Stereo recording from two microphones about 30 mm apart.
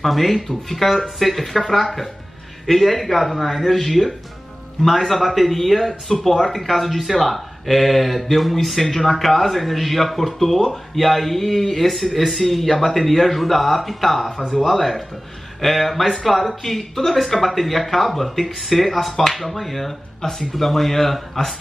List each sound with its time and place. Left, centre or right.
0.0 s speech: centre
2.6 s speech: centre